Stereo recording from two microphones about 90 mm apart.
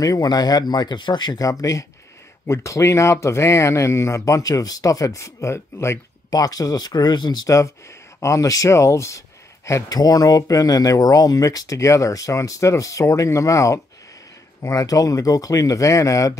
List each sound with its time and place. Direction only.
0.0 s speech: 45° left (ahead or behind)
1.5 s speech: 40° left (ahead or behind)
6.3 s speech: 45° left (ahead or behind)
7.4 s speech: 40° left (ahead or behind)
9.8 s speech: 45° left (ahead or behind)